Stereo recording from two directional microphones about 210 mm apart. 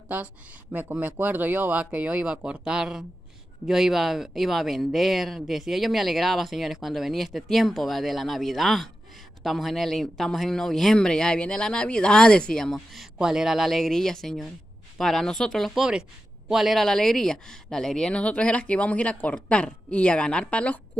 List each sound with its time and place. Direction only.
0.1 s speech: 10° right (ahead or behind)